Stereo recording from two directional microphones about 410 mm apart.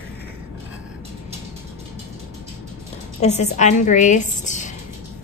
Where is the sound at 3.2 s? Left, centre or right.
Centre.